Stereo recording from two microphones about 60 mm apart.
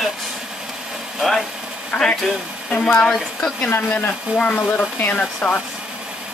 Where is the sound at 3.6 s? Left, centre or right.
Left.